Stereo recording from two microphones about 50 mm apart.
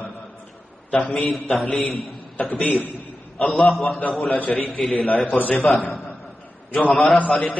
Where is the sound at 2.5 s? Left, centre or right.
Left.